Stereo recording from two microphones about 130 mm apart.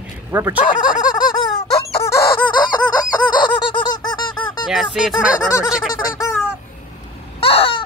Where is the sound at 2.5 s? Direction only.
35° left (ahead or behind).